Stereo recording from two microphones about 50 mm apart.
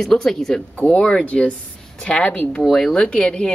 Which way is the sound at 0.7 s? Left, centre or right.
Left.